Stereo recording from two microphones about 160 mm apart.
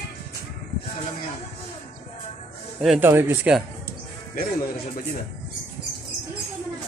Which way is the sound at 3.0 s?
15° right (ahead or behind).